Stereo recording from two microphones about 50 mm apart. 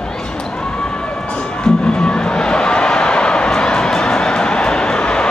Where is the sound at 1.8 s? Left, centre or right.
Centre.